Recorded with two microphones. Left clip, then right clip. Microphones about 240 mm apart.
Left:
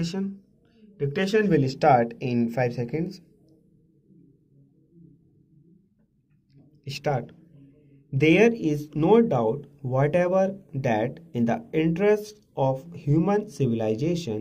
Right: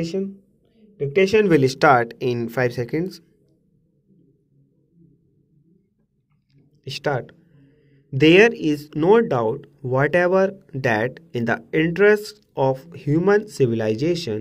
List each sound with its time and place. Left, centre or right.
0.0 s speech: centre
0.7 s a sound: centre
1.2 s speech: right
1.5 s speech: right
6.5 s a sound: right
8.1 s speech: right